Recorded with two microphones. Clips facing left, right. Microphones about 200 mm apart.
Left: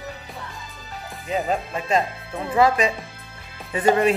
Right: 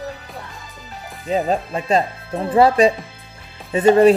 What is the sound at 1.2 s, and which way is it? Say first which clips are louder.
Speech: right 5 dB; 30° right (ahead or behind).